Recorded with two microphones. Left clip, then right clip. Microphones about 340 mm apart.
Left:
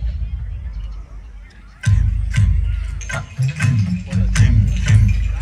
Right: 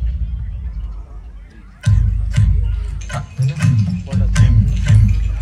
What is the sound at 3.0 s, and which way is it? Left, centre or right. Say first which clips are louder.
Music: left 1 dB; centre.